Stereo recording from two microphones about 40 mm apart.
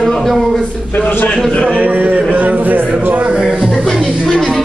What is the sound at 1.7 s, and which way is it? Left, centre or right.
A man's voice, right.